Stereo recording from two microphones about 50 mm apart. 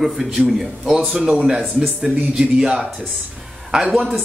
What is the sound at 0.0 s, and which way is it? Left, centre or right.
Speech, centre.